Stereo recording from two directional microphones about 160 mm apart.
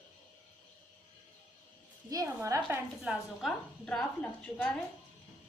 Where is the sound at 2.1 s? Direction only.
20° right (ahead or behind).